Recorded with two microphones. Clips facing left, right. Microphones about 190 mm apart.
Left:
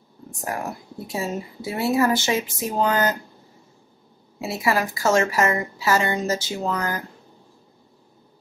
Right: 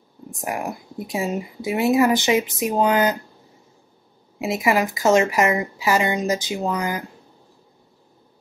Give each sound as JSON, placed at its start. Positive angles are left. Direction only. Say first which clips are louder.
{"t": 0.4, "sound": "speech", "louder": "right 2 dB", "side_deg": -15}
{"t": 4.4, "sound": "speech", "louder": "right 3 dB", "side_deg": -15}